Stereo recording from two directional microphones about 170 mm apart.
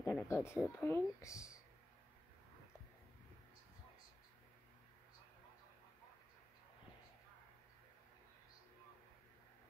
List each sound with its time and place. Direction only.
0.0 s speech: 15° left (ahead or behind)